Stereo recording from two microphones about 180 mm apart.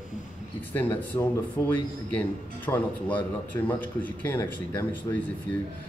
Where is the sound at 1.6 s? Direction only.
15° left (ahead or behind).